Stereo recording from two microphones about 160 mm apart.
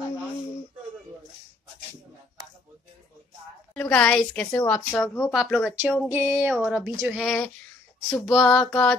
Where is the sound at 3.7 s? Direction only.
10° left (ahead or behind).